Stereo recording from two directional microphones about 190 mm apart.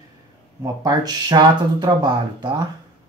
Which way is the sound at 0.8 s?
20° right (ahead or behind).